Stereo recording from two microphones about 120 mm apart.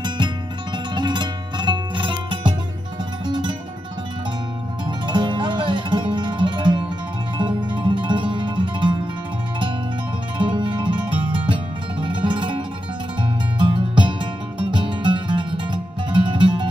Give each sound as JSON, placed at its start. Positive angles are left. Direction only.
{"t": 0.9, "sound": "music", "side_deg": -40}
{"t": 4.8, "sound": "music", "side_deg": -40}
{"t": 10.3, "sound": "music", "side_deg": -45}